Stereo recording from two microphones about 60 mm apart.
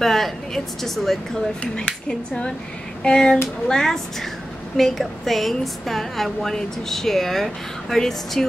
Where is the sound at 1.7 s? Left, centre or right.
Centre.